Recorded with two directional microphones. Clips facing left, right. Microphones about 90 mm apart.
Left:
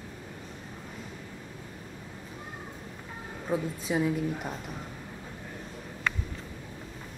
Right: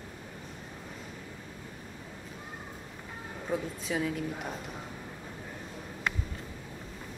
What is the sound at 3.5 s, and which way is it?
A woman's voice, 5° left (ahead or behind).